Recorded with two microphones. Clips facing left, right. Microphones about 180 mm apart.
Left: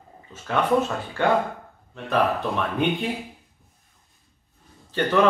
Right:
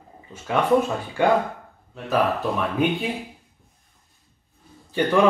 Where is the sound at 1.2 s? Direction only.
10° right (ahead or behind).